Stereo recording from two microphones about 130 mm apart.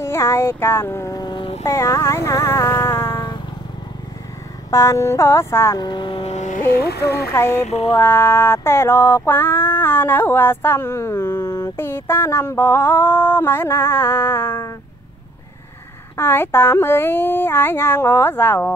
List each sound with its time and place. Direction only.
0.0 s a child's voice: 20° left (ahead or behind); by 1.6 s 40° left (ahead or behind)
1.6 s speech: 20° left (ahead or behind)
4.6 s a child's voice: 25° left (ahead or behind)
5.8 s speech: 35° left (ahead or behind)
6.2 s music: 65° left (ahead or behind)
7.2 s a child's voice: 20° left (ahead or behind)
7.6 s mantra: 55° left (ahead or behind)
7.9 s female singing: 20° left (ahead or behind)
16.2 s female singing: 15° left (ahead or behind)